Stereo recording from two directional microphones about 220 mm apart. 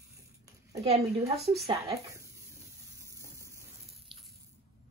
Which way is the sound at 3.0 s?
15° right (ahead or behind).